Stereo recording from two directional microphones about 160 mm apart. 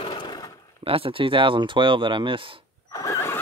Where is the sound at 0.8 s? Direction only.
35° right (ahead or behind).